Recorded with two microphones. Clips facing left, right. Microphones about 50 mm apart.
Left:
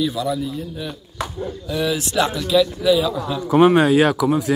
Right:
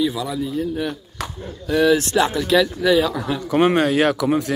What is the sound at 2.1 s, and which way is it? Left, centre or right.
Speech, right.